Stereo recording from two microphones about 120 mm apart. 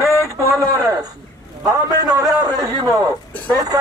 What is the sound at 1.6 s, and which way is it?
A man's voice, 30° right (ahead or behind).